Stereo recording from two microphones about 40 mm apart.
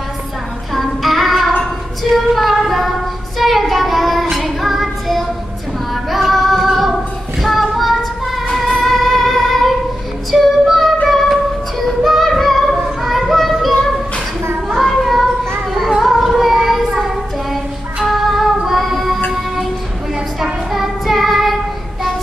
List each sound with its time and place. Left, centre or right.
0.7 s child singing: centre
2.1 s female singing: centre
3.3 s child singing: centre
6.0 s female singing: centre
8.5 s music: centre
10.3 s female singing: centre
11.1 s music: centre
11.8 s child singing: centre
14.9 s child singing: centre
16.0 s female singing: centre
16.3 s child singing: centre
18.0 s music: centre
20.7 s child singing: centre